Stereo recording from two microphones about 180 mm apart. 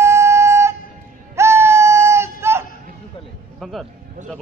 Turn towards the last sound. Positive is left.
turn(degrees=0)  # may be behind; listen again after turning